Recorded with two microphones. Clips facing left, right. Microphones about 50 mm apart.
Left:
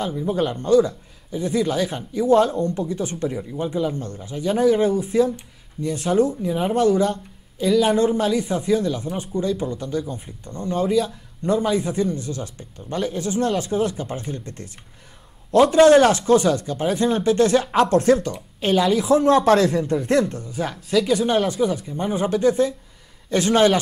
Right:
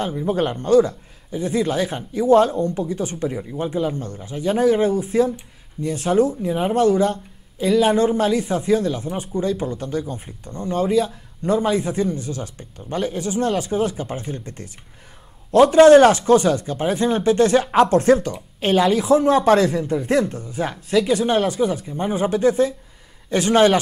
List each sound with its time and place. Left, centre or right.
0.0 s speech: right
7.9 s speech: centre
15.8 s speech: right
19.0 s speech: centre